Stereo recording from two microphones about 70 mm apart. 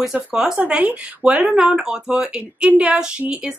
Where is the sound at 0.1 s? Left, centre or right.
Centre.